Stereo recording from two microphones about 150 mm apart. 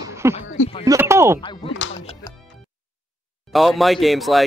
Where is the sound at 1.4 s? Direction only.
35° left (ahead or behind).